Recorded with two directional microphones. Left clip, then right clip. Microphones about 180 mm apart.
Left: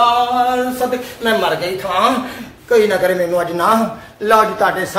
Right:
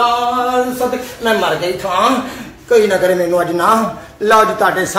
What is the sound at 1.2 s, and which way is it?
A man's voice, centre (ahead or behind).